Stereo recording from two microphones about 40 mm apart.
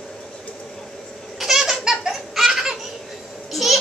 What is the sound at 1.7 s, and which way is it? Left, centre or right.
Belly laugh, centre.